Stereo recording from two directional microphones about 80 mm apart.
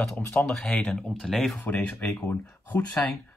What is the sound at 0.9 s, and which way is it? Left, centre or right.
Speech, centre.